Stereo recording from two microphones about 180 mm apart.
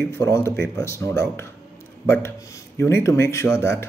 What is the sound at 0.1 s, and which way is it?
Speech, 15° left (ahead or behind).